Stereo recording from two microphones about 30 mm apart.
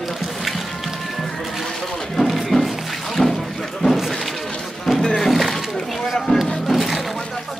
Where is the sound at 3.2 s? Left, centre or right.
Centre.